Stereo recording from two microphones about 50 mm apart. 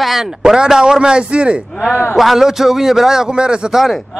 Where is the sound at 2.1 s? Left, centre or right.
Centre.